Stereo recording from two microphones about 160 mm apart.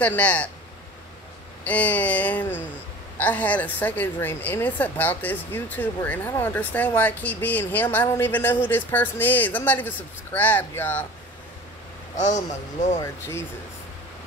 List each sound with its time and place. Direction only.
0.0 s a woman's voice: 10° left (ahead or behind)
1.6 s a woman's voice: 10° left (ahead or behind)
12.2 s speech: 50° left (ahead or behind)